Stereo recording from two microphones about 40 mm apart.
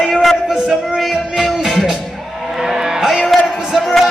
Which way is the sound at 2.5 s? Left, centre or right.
Centre.